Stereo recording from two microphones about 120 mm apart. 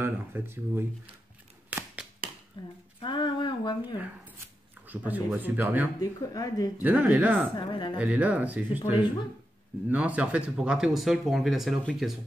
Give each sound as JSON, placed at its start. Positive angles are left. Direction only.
{"t": 0.0, "sound": "speech", "side_deg": -20}
{"t": 1.7, "sound": "a sound", "side_deg": -15}
{"t": 2.6, "sound": "speech", "side_deg": 40}
{"t": 4.8, "sound": "speech", "side_deg": -15}
{"t": 5.9, "sound": "speech", "side_deg": 30}
{"t": 6.8, "sound": "speech", "side_deg": -15}
{"t": 7.5, "sound": "speech", "side_deg": 40}
{"t": 8.0, "sound": "speech", "side_deg": -10}